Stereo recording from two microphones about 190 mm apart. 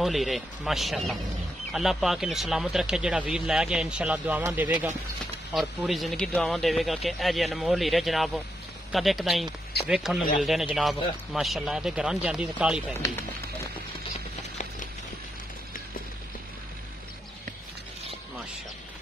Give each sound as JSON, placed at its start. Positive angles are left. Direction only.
{"t": 0.0, "sound": "speech", "side_deg": 0}
{"t": 13.0, "sound": "speech", "side_deg": 15}